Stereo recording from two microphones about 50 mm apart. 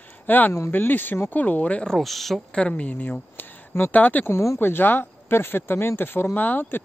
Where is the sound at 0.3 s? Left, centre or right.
Left.